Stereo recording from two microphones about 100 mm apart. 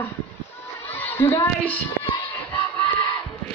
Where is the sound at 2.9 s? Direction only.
55° left (ahead or behind).